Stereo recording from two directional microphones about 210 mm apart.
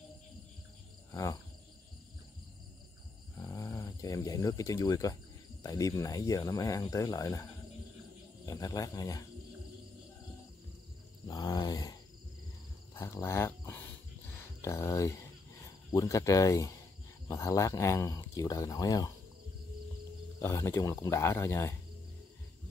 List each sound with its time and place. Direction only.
1.1 s speech: 15° left (ahead or behind)
3.3 s speech: 15° left (ahead or behind)
8.5 s speech: 15° left (ahead or behind)
11.2 s a sound: 20° left (ahead or behind)
12.9 s speech: 10° left (ahead or behind)
20.3 s speech: 10° left (ahead or behind)